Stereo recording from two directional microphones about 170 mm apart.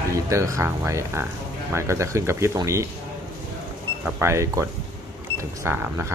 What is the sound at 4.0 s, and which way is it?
Speech, 15° right (ahead or behind).